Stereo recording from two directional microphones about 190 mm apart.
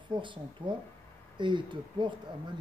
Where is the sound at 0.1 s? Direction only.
25° right (ahead or behind).